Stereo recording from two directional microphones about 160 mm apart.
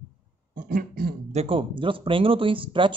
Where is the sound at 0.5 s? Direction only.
60° right (ahead or behind).